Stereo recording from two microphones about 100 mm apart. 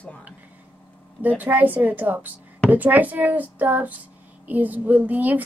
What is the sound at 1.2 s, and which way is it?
Speech, 20° right (ahead or behind).